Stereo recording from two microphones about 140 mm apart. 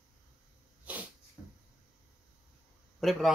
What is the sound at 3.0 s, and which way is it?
Speech, centre (ahead or behind).